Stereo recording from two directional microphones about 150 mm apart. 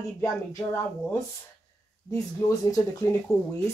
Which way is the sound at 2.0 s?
20° left (ahead or behind).